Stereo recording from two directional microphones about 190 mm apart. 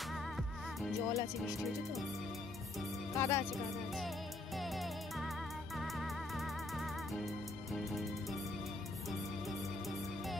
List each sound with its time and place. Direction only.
1.0 s speech: 20° left (ahead or behind)
3.2 s speech: 15° left (ahead or behind)
3.5 s speech: centre (ahead or behind)
4.6 s music: centre (ahead or behind)